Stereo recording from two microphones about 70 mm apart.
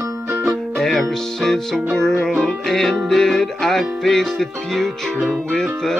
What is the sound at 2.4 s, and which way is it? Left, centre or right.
Music, centre.